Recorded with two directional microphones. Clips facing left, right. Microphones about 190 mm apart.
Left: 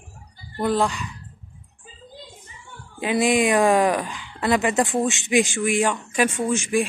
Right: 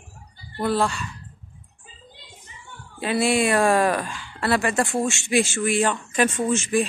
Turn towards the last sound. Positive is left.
turn(degrees=15)  # may be behind; listen again after turning